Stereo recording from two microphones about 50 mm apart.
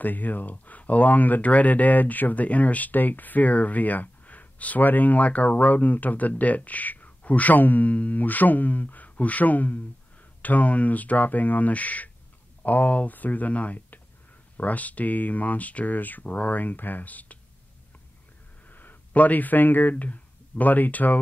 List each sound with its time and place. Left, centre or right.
0.0 s speech: left
18.7 s speech: left